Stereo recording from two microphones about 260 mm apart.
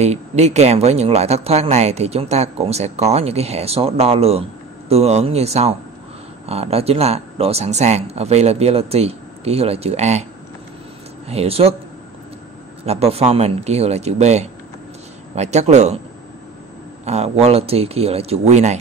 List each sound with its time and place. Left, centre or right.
0.0 s speech: right
11.2 s speech: right
12.8 s speech: right
17.0 s speech: right